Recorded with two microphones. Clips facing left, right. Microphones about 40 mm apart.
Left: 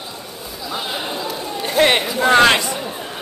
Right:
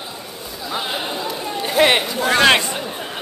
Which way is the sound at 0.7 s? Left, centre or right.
Centre.